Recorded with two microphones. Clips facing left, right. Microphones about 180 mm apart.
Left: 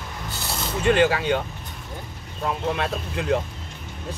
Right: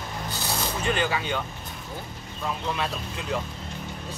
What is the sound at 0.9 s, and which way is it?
Speech, 65° left (ahead or behind).